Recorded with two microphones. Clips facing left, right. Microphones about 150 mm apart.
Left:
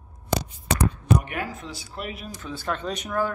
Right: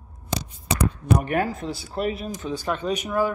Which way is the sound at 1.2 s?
40° right (ahead or behind).